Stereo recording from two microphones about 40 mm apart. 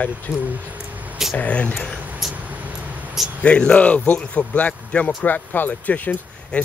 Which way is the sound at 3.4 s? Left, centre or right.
Left.